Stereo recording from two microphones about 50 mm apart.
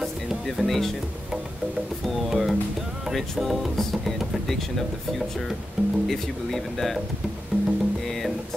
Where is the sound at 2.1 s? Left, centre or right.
Centre.